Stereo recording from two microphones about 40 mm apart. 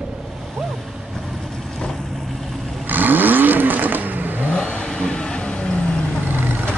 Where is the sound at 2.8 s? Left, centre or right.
Right.